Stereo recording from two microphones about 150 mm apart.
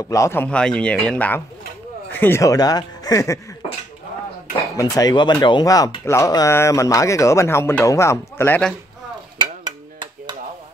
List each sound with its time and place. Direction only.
0.1 s a man's voice: 15° left (ahead or behind)
4.7 s speech: 25° left (ahead or behind)
9.7 s a sound: 30° right (ahead or behind)